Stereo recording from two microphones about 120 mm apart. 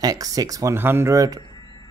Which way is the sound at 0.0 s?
30° right (ahead or behind).